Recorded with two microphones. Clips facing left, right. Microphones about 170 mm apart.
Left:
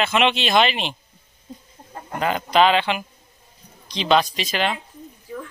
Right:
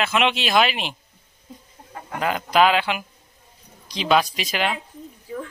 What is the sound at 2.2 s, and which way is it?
Speech, 5° right (ahead or behind).